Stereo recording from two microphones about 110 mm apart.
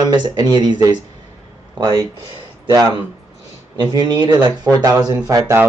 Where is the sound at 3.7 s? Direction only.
40° right (ahead or behind).